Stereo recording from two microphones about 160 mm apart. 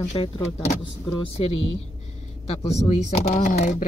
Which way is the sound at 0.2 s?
30° left (ahead or behind).